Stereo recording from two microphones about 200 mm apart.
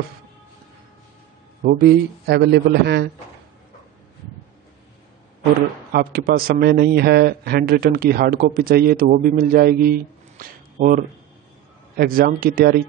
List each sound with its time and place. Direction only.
1.6 s a man's voice: 50° right (ahead or behind)
5.9 s a man's voice: 50° right (ahead or behind)